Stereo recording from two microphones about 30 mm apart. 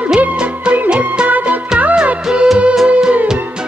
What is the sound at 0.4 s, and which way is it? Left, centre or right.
Music, right.